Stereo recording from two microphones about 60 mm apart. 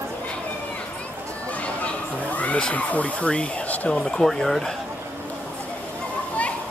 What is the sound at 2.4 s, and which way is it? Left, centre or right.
Speech, left.